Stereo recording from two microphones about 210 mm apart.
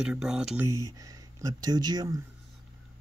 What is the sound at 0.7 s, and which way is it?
Speech, 15° right (ahead or behind).